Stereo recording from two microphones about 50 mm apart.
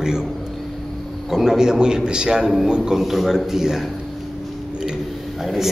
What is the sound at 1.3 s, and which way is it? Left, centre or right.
A man's voice, centre.